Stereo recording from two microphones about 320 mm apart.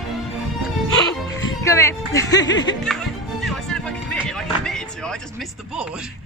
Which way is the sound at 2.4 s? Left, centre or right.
Left.